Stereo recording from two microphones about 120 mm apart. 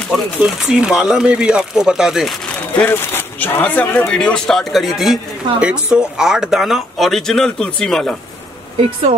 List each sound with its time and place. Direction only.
0.4 s speech: 5° right (ahead or behind)
2.8 s speech: 15° left (ahead or behind)